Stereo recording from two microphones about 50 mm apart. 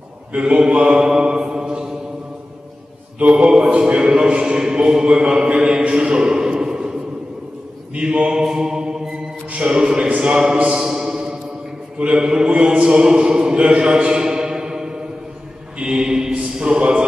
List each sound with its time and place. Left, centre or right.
0.3 s mantra: centre
3.2 s mantra: right
3.4 s speech: centre
7.9 s mantra: right
9.5 s a sound: centre
10.3 s speech: centre
10.7 s a sound: centre
12.0 s mantra: centre